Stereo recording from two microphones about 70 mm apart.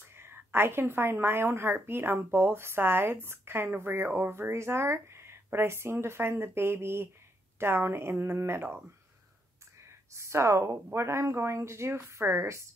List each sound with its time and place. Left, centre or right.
0.0 s a woman's voice: right
9.8 s a woman's voice: right